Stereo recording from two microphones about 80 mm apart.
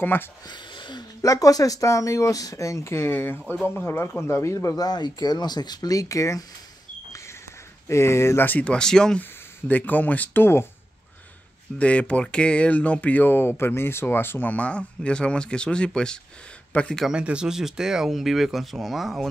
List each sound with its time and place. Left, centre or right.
0.0 s speech: left
0.5 s a sound: left
1.2 s speech: left
4.7 s speech: left
7.9 s speech: left
8.5 s speech: centre
9.2 s speech: left
11.8 s speech: centre
17.1 s speech: centre